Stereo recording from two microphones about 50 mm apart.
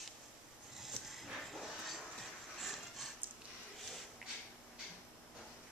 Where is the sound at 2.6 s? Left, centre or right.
Centre.